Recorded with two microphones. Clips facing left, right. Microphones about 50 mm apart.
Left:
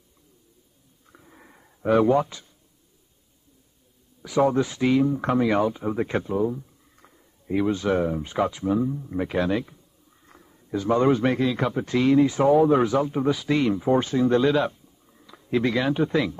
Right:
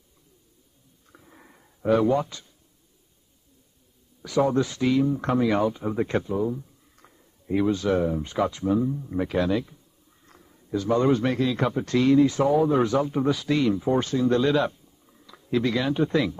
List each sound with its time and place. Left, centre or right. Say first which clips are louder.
1.1 s a sound: left 1 dB; centre
4.2 s speech: left 1 dB; centre
6.2 s speech: left 2 dB; centre
6.5 s a sound: right 1 dB; centre
7.6 s speech: even; centre
9.4 s speech: even; centre
10.2 s a sound: left 1 dB; centre
11.1 s speech: left 1 dB; centre
13.7 s speech: left 1 dB; left
14.4 s speech: left 1 dB; centre
15.3 s a sound: left 1 dB; centre
15.7 s speech: left 1 dB; centre